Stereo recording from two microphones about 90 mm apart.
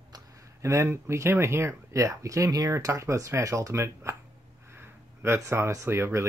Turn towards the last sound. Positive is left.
turn(degrees=-25)  # may be behind; listen again after turning